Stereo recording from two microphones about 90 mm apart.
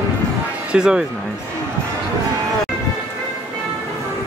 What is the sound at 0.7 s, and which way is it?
Speech, 10° right (ahead or behind).